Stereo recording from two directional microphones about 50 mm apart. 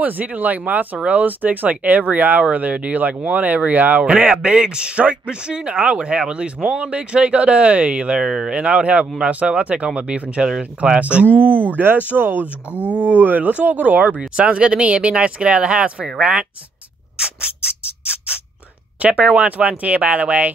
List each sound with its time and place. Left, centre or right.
0.0 s speech: right
10.4 s speech: centre
11.0 s speech: right
11.4 s speech: right
12.9 s speech: right
17.2 s mechanisms: right
18.9 s speech: right